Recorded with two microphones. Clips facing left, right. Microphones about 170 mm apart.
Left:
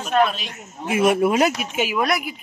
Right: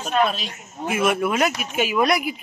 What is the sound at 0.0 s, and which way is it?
Speech, 35° right (ahead or behind).